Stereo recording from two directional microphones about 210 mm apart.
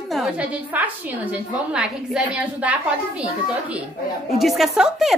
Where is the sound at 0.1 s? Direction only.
5° right (ahead or behind).